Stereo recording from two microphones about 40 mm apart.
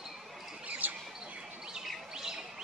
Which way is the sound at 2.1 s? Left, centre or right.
Centre.